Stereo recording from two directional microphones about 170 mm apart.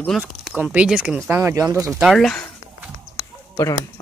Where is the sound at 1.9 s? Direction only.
Centre (ahead or behind).